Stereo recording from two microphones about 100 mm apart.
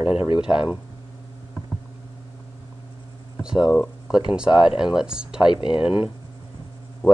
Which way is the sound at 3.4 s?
5° right (ahead or behind).